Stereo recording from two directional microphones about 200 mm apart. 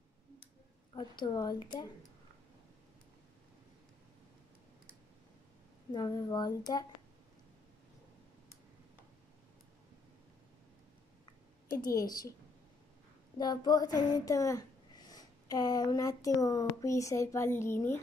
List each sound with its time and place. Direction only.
1.2 s speech: 20° left (ahead or behind)
5.9 s speech: 20° left (ahead or behind)
11.8 s speech: 20° left (ahead or behind)
13.4 s speech: 20° left (ahead or behind)